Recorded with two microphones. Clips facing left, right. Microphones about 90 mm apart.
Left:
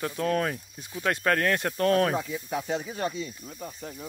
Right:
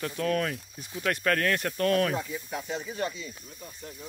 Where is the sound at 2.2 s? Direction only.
65° left (ahead or behind).